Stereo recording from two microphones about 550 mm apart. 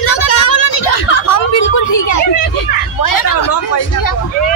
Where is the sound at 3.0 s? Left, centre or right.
Left.